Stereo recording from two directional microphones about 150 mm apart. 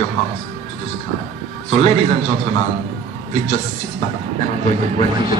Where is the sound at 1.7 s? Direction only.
40° left (ahead or behind).